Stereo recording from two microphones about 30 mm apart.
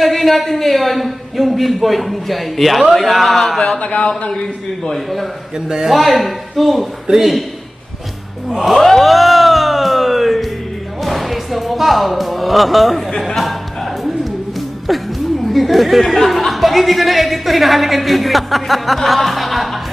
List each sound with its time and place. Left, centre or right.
0.0 s speech: centre
3.6 s speech: left
4.9 s speech: centre
8.6 s speech: centre
14.9 s speech: centre